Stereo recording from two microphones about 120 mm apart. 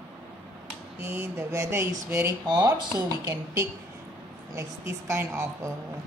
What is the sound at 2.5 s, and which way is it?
A woman's voice, 35° right (ahead or behind).